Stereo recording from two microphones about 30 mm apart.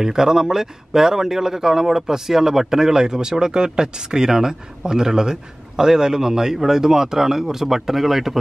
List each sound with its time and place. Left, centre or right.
0.0 s speech: centre